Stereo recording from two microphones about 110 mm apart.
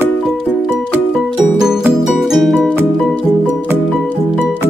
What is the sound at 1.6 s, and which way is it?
Music, 5° right (ahead or behind).